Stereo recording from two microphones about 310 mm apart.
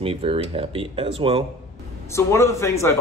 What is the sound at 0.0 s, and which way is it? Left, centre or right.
Speech, centre.